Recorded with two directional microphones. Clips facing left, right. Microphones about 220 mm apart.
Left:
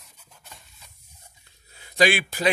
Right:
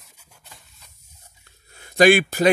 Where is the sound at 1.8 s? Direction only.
50° right (ahead or behind).